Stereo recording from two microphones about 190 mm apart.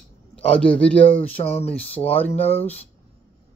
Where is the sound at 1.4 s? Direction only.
35° left (ahead or behind).